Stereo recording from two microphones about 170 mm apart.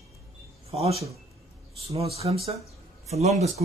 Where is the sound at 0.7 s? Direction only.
35° right (ahead or behind).